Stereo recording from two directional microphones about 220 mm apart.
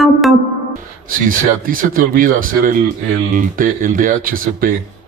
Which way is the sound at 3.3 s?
40° right (ahead or behind).